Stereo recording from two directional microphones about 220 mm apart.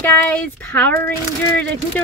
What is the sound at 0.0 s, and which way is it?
A woman's voice, 5° left (ahead or behind).